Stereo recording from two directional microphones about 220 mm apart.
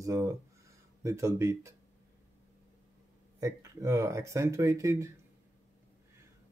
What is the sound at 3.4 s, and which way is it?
Speech, 15° right (ahead or behind).